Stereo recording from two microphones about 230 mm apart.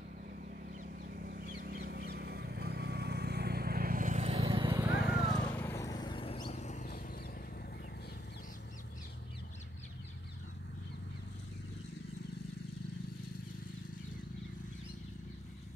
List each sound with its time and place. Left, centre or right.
0.7 s bird: right; by 4.8 s centre
4.9 s vehicle: centre; by 7.1 s left